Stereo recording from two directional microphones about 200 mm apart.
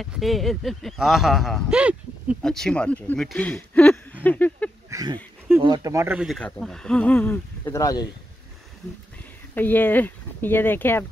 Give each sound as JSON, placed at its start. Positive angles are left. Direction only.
{"t": 0.0, "sound": "speech", "side_deg": 0}
{"t": 4.9, "sound": "speech", "side_deg": -20}
{"t": 6.1, "sound": "speech", "side_deg": 0}
{"t": 9.6, "sound": "speech", "side_deg": 10}